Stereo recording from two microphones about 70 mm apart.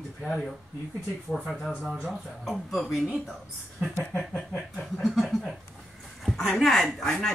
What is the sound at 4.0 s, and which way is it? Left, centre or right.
Speech, left.